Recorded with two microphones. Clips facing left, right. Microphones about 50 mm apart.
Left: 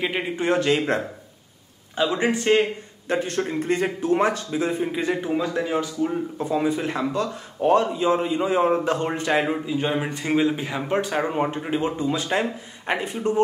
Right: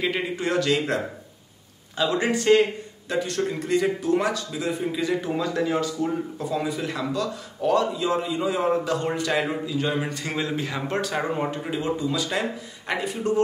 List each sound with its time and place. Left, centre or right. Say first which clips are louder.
0.0 s speech: left 1 dB; left
3.1 s speech: left 1 dB; left
5.3 s speech: left 1 dB; centre
6.3 s speech: left 4 dB; left